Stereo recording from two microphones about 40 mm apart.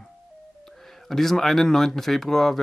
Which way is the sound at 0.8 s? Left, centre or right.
Centre.